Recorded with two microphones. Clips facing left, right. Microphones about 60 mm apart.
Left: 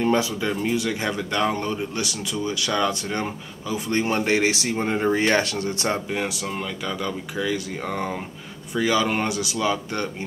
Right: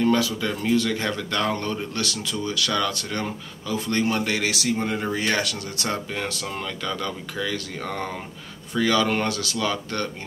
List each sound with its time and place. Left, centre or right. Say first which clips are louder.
0.0 s speech: even; left
6.1 s speech: left 2 dB; centre